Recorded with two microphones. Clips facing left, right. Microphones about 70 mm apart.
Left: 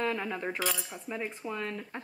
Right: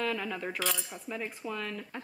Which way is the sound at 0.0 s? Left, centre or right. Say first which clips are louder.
Left 1 dB; left.